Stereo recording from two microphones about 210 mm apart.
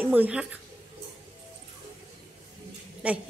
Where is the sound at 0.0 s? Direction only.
10° right (ahead or behind).